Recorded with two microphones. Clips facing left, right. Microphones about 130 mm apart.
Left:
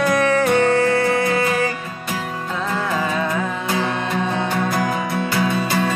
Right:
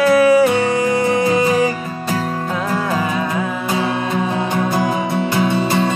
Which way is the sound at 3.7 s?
15° right (ahead or behind).